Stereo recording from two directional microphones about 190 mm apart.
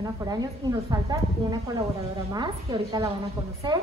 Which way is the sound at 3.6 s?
25° right (ahead or behind).